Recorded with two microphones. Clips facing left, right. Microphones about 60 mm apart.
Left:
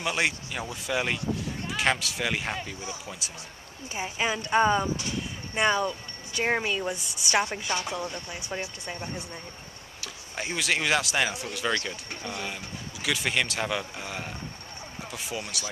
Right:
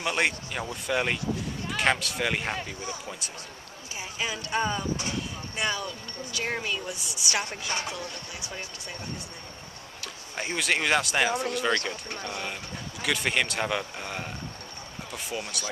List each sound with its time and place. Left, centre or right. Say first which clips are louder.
0.0 s speech: right 1 dB; centre
3.9 s speech: left 4 dB; left
6.9 s a woman's voice: left 4 dB; left
7.4 s speech: left 2 dB; centre
10.0 s speech: even; centre